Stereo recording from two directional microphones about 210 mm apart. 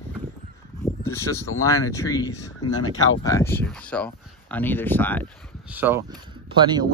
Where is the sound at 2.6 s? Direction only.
90° left.